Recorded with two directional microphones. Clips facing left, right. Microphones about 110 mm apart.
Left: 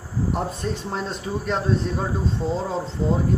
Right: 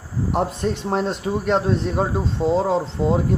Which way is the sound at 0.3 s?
65° right (ahead or behind).